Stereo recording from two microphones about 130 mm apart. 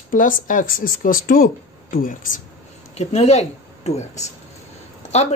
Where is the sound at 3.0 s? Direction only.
60° left (ahead or behind).